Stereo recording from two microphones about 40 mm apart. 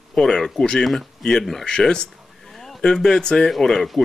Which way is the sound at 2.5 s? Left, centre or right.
Centre.